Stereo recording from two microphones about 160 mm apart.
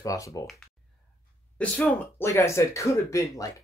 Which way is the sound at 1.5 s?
10° left (ahead or behind).